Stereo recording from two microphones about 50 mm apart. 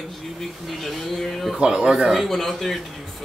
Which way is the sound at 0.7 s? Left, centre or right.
Centre.